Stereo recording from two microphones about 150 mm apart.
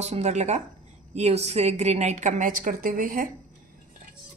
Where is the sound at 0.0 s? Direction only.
50° right (ahead or behind); by 3.3 s 65° right (ahead or behind).